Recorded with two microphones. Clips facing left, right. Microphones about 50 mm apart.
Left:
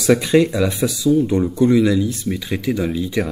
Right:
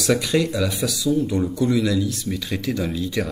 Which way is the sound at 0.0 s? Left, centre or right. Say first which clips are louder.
Left 6 dB; left.